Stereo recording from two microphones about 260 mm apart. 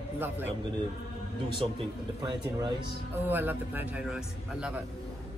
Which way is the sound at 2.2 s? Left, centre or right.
Centre.